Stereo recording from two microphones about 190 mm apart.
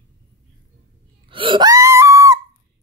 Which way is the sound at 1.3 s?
25° right (ahead or behind).